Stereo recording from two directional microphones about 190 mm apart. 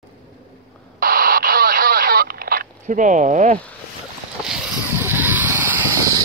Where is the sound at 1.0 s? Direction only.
50° right (ahead or behind).